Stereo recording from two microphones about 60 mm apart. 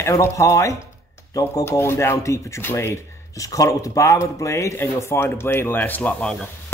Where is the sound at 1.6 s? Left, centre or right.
Left.